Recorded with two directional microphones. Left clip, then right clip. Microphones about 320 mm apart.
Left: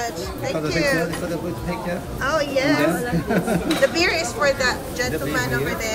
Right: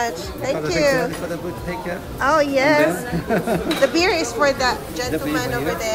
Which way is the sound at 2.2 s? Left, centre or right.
Centre.